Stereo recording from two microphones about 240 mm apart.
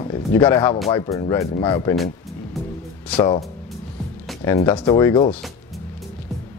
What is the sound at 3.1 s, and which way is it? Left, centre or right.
Speech, left.